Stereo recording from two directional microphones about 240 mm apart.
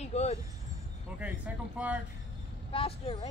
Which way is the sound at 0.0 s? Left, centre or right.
Left.